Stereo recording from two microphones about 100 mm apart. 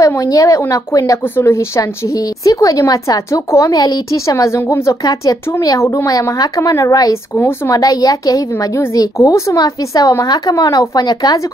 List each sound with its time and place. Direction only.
0.0 s a woman's voice: 35° left (ahead or behind)
7.3 s speech: 20° left (ahead or behind)
7.7 s a woman's voice: 40° left (ahead or behind)